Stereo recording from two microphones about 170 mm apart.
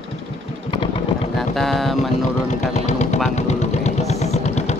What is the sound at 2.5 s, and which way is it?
Vehicle, 45° left (ahead or behind).